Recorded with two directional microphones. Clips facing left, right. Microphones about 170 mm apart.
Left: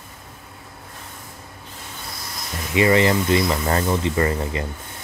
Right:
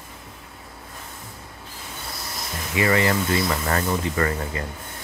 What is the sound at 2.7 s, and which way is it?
Speech, 25° left (ahead or behind).